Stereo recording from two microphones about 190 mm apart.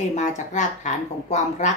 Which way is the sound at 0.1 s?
40° left (ahead or behind).